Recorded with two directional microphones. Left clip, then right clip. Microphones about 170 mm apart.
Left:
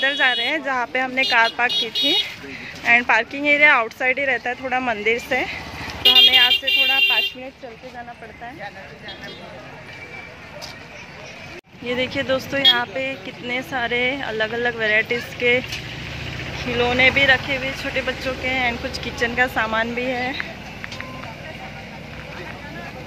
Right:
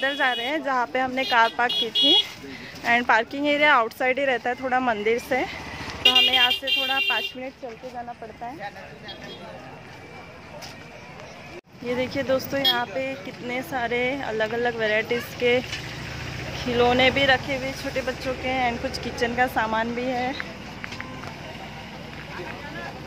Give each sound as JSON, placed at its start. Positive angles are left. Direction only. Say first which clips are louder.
{"t": 0.1, "sound": "speech", "louder": "left 5 dB", "side_deg": -20}
{"t": 11.8, "sound": "speech", "louder": "left 3 dB", "side_deg": -10}
{"t": 16.5, "sound": "speech", "louder": "left 1 dB", "side_deg": -30}